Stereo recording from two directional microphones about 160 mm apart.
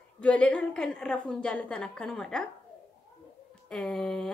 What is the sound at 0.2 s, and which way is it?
Speech, 10° left (ahead or behind).